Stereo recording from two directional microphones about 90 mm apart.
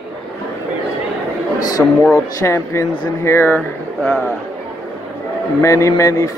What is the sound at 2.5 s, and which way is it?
A man's voice, 30° left (ahead or behind).